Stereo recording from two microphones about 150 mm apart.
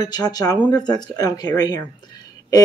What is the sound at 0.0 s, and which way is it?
Speech, 25° left (ahead or behind).